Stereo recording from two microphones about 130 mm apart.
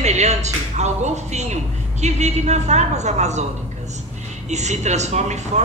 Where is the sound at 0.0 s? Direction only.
60° right (ahead or behind).